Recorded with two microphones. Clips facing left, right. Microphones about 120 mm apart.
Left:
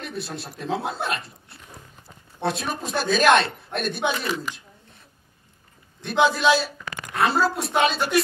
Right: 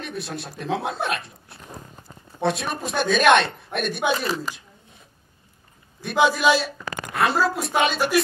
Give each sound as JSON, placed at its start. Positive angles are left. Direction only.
{"t": 0.0, "sound": "speech", "side_deg": 0}
{"t": 4.1, "sound": "speech", "side_deg": -40}
{"t": 5.9, "sound": "speech", "side_deg": 0}
{"t": 6.8, "sound": "a sound", "side_deg": -40}
{"t": 7.2, "sound": "speech", "side_deg": 0}